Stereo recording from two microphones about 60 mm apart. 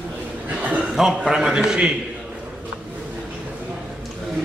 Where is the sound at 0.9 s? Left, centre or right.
Centre.